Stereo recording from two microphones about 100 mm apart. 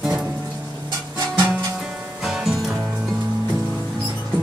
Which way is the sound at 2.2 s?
5° right (ahead or behind).